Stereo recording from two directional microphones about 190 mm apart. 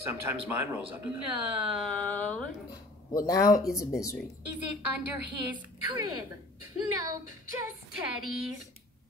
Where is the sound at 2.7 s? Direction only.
20° left (ahead or behind).